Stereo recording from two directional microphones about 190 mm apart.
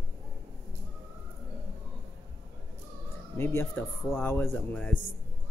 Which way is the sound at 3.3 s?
10° left (ahead or behind).